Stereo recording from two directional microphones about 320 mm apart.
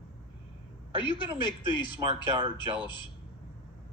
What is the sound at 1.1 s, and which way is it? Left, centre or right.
Speech, centre.